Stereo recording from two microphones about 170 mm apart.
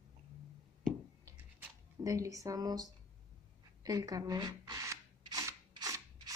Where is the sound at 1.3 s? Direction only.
20° right (ahead or behind).